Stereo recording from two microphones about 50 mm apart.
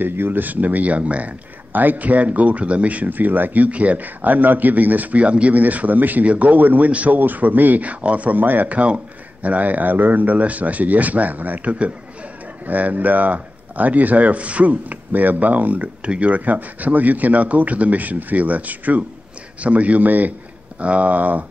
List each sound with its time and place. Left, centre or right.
0.0 s speech: right